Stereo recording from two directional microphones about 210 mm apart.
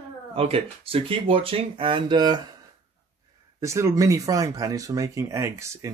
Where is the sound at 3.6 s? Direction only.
15° right (ahead or behind).